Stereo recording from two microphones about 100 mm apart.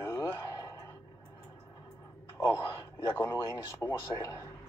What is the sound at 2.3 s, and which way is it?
Speech, 25° left (ahead or behind).